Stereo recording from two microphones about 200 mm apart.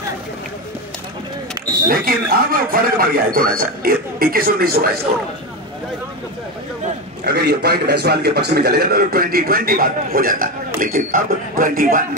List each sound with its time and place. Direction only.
1.9 s a man's voice: 45° right (ahead or behind)
7.2 s a man's voice: 50° right (ahead or behind)